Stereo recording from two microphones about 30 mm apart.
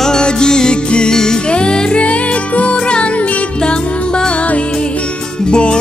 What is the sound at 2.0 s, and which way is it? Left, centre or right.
Music, left.